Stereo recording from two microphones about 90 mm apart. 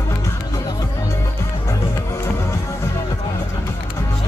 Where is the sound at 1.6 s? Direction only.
30° left (ahead or behind).